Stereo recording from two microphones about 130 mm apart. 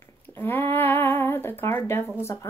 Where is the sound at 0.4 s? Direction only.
15° left (ahead or behind).